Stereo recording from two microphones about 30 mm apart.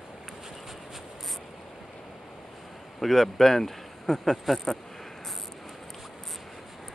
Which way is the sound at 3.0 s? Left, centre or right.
Centre.